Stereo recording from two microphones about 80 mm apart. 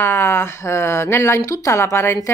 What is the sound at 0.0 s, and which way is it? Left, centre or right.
Speech, left.